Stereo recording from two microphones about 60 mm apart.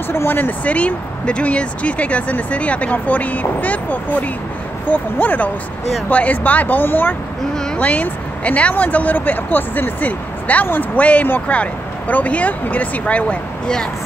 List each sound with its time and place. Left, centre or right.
0.1 s speech: left; by 13.8 s centre